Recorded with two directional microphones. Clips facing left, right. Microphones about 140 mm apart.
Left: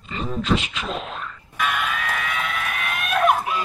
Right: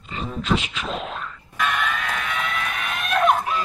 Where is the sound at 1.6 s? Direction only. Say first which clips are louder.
Even; 5° left (ahead or behind).